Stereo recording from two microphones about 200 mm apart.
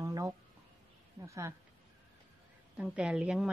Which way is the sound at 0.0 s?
15° right (ahead or behind).